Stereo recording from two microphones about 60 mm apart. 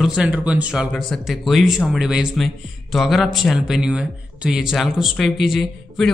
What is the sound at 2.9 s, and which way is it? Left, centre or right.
Speech, centre.